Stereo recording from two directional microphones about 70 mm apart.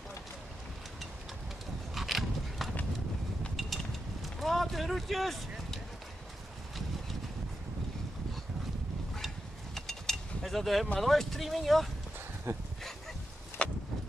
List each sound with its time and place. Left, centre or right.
2.0 s a sound: centre
9.8 s mechanisms: centre
11.0 s speech: centre
12.5 s speech: right
13.6 s vehicle: centre